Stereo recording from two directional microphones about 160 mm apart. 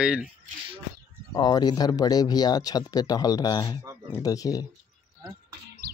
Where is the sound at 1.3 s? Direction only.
25° left (ahead or behind).